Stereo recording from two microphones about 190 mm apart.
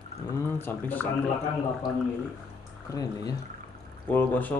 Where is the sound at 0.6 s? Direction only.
10° left (ahead or behind).